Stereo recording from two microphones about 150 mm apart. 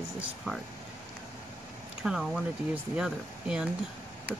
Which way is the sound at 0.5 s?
5° right (ahead or behind).